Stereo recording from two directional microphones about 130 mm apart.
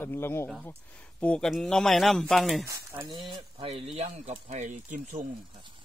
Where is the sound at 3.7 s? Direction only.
55° right (ahead or behind).